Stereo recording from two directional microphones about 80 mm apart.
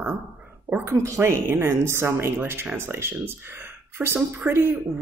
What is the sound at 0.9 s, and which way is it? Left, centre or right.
Speech, right.